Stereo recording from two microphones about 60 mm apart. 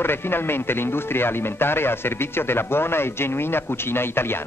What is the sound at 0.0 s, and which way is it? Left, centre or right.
Speech, left.